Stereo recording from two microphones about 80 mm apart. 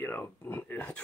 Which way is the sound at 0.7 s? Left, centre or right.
Centre.